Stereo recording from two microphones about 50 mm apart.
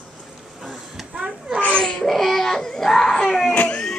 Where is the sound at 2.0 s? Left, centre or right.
Centre.